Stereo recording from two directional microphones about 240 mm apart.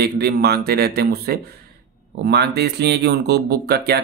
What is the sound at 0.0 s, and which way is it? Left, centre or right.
Speech, right.